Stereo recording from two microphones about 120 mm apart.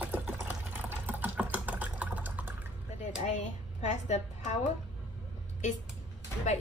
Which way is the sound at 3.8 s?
70° left (ahead or behind).